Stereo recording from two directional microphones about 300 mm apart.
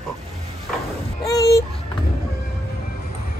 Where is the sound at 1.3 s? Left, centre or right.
Centre.